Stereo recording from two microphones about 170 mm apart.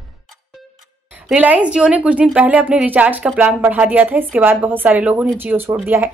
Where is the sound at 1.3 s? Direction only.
10° right (ahead or behind).